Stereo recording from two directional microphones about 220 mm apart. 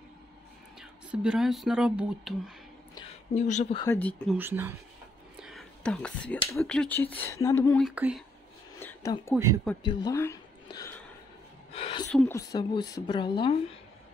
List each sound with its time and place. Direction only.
0.7 s speech: 5° right (ahead or behind)
3.3 s speech: 30° left (ahead or behind)
3.8 s speech: 10° left (ahead or behind)
4.4 s speech: 10° right (ahead or behind)
5.4 s whispering: centre (ahead or behind)
6.6 s speech: 5° left (ahead or behind)
7.9 s speech: 5° right (ahead or behind)
8.7 s a sound: 10° left (ahead or behind)
9.8 s a woman's voice: 20° left (ahead or behind)
11.7 s a sound: 25° left (ahead or behind)
12.1 s speech: 5° left (ahead or behind)
12.4 s speech: 15° left (ahead or behind)